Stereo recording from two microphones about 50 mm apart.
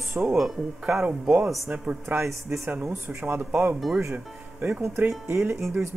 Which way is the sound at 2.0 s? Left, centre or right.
Right.